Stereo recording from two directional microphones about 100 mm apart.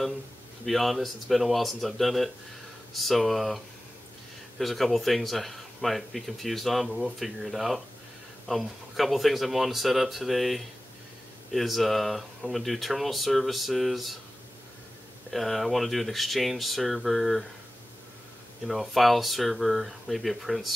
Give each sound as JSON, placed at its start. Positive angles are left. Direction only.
{"t": 0.7, "sound": "speech", "side_deg": 0}
{"t": 15.3, "sound": "speech", "side_deg": 0}
{"t": 18.7, "sound": "speech", "side_deg": 0}